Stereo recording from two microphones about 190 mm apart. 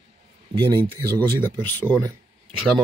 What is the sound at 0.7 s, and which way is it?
Speech, 20° right (ahead or behind).